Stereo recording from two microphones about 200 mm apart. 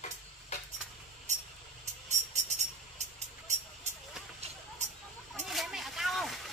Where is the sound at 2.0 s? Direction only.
35° right (ahead or behind).